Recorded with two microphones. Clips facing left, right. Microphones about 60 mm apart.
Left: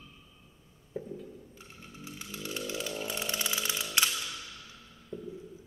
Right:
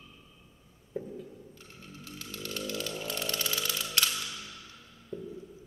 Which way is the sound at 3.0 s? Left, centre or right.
Centre.